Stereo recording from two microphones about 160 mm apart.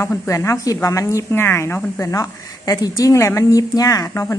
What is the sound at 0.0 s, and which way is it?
A woman's voice, 15° left (ahead or behind).